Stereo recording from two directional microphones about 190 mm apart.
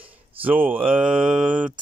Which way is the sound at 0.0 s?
10° right (ahead or behind).